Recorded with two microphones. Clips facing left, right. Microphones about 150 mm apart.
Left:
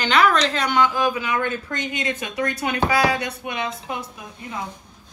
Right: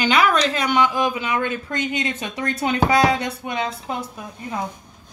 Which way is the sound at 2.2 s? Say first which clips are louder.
Even; 30° right (ahead or behind).